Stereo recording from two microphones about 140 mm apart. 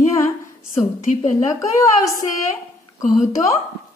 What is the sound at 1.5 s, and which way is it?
A woman's voice, 20° left (ahead or behind).